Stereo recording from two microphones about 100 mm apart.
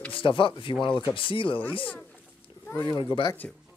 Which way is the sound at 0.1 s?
60° left (ahead or behind).